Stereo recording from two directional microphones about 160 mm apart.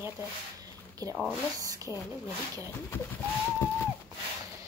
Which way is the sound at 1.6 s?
20° right (ahead or behind).